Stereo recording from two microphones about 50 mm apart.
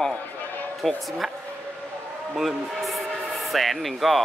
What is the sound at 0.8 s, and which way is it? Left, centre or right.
Speech, centre.